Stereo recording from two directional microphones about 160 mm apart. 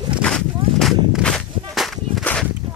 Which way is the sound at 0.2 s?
5° left (ahead or behind).